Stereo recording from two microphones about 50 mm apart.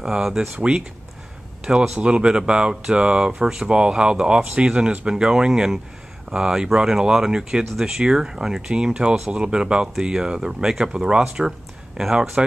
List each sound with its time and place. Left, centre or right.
0.1 s speech: centre